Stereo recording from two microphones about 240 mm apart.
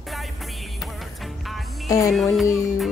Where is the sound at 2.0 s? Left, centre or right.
Centre.